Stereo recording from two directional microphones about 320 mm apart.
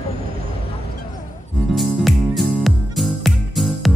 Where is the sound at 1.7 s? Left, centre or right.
Centre.